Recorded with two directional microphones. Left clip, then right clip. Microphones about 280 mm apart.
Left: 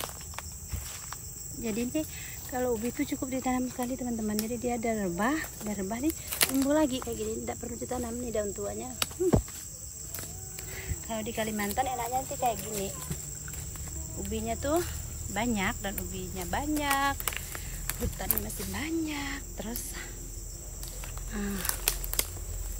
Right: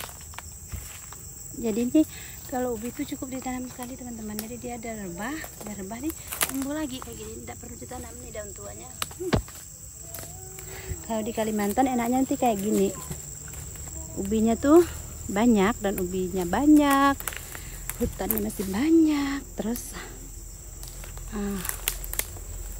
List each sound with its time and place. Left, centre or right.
1.6 s cricket: centre
2.5 s speech: centre
6.7 s speech: centre
10.7 s speech: centre
14.2 s speech: centre
15.3 s cricket: centre
16.0 s speech: centre
17.2 s cricket: centre
18.2 s speech: centre
21.3 s speech: centre